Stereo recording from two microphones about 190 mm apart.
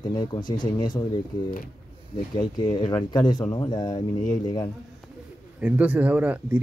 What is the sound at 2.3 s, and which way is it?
Speech, 25° left (ahead or behind).